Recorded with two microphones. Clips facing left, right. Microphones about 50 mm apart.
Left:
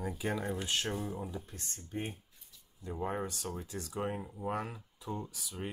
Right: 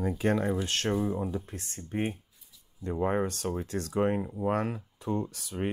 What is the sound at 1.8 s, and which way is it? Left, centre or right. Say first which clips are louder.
Speech: right 8 dB; right.